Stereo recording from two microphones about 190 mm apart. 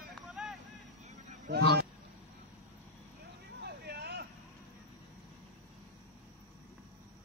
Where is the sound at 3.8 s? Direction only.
60° right (ahead or behind).